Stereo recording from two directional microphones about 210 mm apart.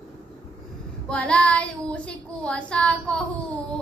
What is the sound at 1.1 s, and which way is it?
Speech, 5° left (ahead or behind).